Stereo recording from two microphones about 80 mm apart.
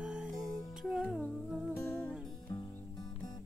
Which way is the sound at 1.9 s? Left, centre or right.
Left.